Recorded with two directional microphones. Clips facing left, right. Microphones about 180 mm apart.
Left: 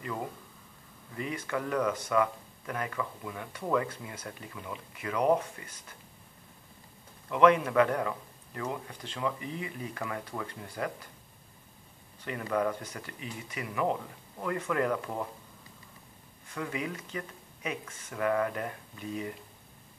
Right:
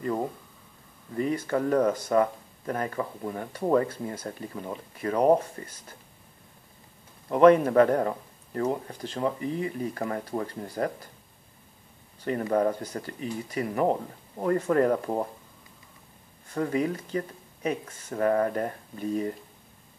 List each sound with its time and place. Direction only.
0.0 s speech: 40° right (ahead or behind)
7.2 s speech: 40° right (ahead or behind)
12.3 s speech: 40° right (ahead or behind)
16.5 s speech: 40° right (ahead or behind)